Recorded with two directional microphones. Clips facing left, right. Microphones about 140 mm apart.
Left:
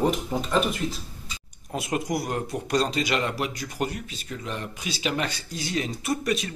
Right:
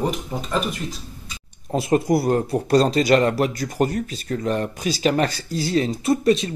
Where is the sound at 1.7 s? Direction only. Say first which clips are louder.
Right 9 dB; 30° right (ahead or behind).